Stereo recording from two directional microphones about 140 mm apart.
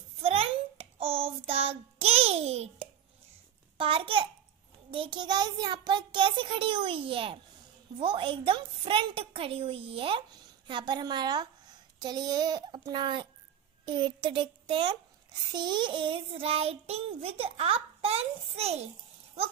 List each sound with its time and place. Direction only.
0.2 s child singing: 45° right (ahead or behind)
12.0 s a child's voice: 30° right (ahead or behind)
13.8 s child singing: 35° right (ahead or behind)